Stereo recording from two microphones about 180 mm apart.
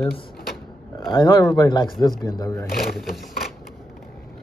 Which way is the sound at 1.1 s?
25° left (ahead or behind).